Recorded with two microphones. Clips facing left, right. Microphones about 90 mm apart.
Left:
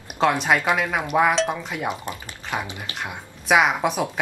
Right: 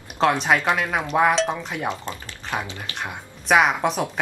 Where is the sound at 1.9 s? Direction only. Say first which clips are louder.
Even; 15° left (ahead or behind).